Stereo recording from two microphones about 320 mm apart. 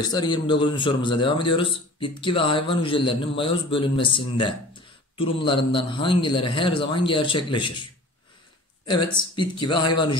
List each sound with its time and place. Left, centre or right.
0.0 s a man's voice: centre
8.8 s a man's voice: centre